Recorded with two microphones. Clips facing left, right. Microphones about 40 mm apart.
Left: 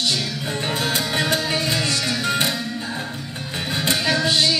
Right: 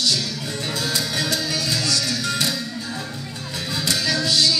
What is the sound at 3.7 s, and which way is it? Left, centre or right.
Music, left.